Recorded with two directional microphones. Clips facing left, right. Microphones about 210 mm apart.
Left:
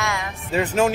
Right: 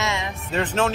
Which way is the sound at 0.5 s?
10° left (ahead or behind).